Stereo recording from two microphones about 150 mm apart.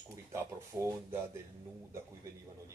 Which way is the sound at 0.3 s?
20° right (ahead or behind).